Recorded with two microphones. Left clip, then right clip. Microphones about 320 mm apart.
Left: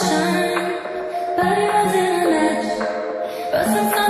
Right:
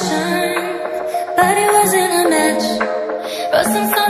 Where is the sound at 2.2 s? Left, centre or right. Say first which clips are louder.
Right 3 dB; right.